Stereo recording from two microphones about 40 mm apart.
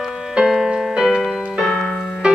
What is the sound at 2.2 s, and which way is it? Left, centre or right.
Music, right.